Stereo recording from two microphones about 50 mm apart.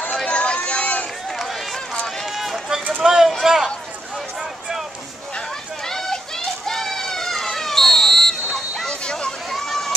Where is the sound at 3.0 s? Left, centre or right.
Centre.